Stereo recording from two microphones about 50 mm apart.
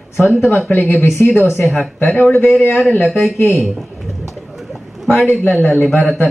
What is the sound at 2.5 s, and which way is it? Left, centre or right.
Speech, left.